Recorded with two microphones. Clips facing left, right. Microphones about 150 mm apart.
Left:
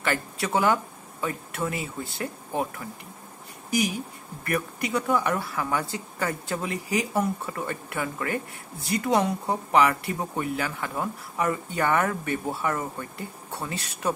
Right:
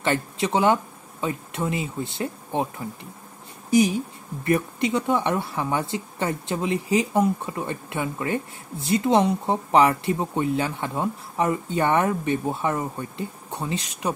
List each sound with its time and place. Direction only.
0.0 s speech: 20° right (ahead or behind)
4.5 s speech: 25° right (ahead or behind)